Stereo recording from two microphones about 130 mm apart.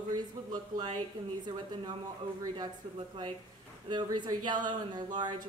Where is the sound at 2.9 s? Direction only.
40° right (ahead or behind).